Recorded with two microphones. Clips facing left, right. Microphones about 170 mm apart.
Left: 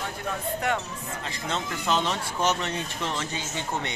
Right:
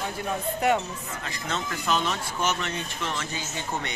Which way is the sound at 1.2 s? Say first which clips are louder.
Left 1 dB; 25° left (ahead or behind).